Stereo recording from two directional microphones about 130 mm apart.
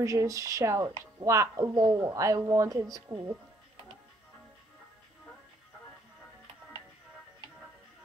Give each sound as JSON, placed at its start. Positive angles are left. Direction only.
{"t": 0.0, "sound": "speech", "side_deg": -25}